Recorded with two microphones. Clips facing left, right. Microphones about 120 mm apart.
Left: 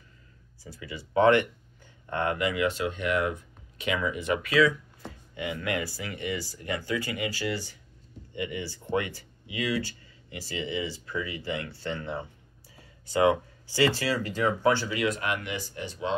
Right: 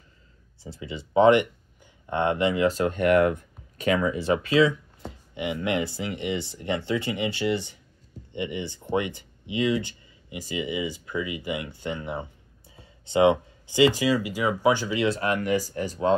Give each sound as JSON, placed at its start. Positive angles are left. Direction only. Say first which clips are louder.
{"t": 0.7, "sound": "speech", "louder": "right 4 dB", "side_deg": -25}